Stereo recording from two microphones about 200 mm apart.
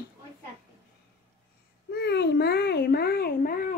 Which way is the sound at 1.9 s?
55° left (ahead or behind).